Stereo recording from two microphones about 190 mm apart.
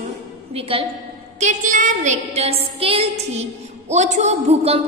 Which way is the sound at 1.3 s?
40° right (ahead or behind).